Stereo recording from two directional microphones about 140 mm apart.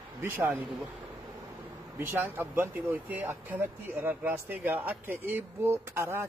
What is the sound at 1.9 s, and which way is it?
Speech, 15° right (ahead or behind).